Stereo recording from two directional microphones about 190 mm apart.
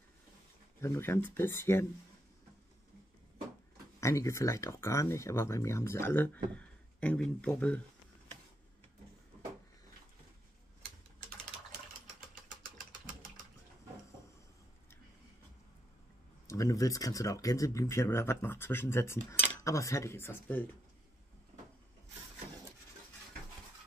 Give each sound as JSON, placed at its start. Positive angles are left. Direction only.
{"t": 0.7, "sound": "speech", "side_deg": 15}
{"t": 4.0, "sound": "speech", "side_deg": 15}
{"t": 16.4, "sound": "speech", "side_deg": 15}